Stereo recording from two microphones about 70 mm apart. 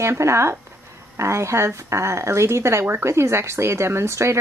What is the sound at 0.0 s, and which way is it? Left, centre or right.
A woman's voice, right.